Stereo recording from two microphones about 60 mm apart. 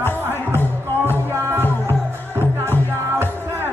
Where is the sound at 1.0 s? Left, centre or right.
Right.